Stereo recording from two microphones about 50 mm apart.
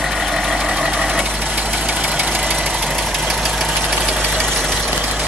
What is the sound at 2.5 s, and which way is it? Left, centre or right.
Vehicle, centre.